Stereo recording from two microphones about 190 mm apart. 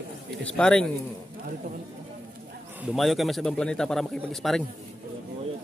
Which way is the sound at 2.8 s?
Centre (ahead or behind).